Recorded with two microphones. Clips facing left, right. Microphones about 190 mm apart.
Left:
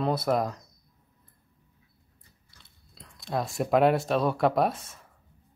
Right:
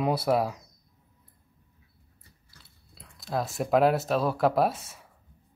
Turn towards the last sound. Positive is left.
turn(degrees=-5)  # may be behind; listen again after turning